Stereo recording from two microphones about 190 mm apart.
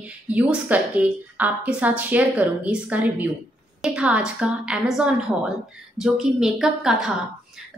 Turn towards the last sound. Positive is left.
turn(degrees=-5)  # may be behind; listen again after turning